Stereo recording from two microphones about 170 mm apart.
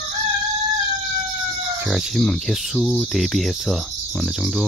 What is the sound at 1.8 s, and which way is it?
Speech, centre (ahead or behind).